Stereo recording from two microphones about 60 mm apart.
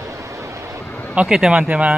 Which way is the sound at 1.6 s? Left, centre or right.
Right.